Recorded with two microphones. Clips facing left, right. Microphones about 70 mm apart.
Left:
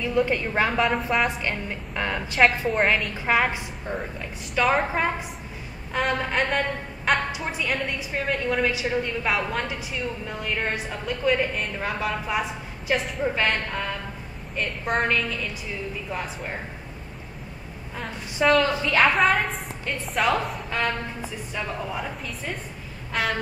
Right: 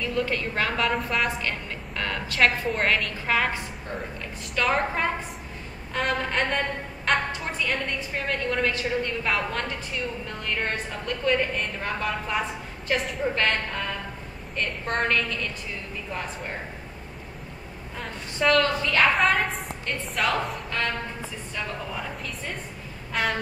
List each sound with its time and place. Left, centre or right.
0.0 s a woman's voice: centre
0.7 s a woman's voice: centre
1.2 s a woman's voice: centre
2.4 s a woman's voice: centre
3.3 s a woman's voice: centre
17.9 s a woman's voice: centre